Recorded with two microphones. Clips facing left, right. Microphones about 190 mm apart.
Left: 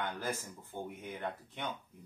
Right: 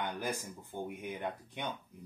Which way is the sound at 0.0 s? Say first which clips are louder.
Right 1 dB; 15° right (ahead or behind).